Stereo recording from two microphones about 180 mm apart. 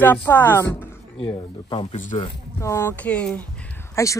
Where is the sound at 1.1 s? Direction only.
30° left (ahead or behind).